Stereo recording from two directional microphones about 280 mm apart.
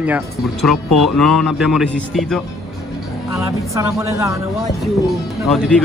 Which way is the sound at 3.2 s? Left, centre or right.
Centre.